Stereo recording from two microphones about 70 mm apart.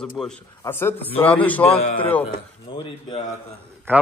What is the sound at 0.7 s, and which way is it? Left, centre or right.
A man's voice, left.